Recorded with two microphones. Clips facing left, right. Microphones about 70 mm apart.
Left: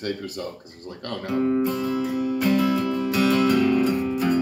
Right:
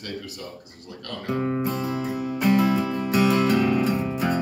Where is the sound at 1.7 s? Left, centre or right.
Centre.